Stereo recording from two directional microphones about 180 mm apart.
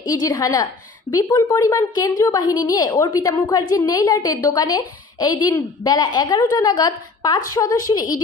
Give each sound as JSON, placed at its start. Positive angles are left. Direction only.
{"t": 0.0, "sound": "a woman's voice", "side_deg": 20}